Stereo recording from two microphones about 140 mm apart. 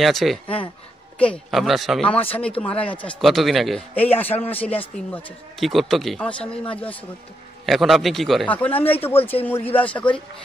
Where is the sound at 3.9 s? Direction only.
15° left (ahead or behind).